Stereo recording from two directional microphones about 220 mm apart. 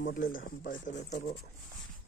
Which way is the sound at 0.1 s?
40° left (ahead or behind).